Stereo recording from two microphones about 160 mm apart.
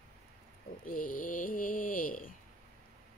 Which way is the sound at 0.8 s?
60° left (ahead or behind).